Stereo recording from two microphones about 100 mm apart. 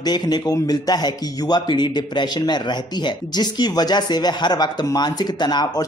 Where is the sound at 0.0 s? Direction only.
40° left (ahead or behind).